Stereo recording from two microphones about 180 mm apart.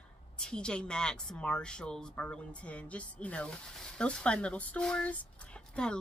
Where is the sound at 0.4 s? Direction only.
5° left (ahead or behind).